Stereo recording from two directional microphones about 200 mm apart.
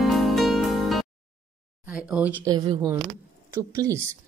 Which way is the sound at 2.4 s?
20° right (ahead or behind).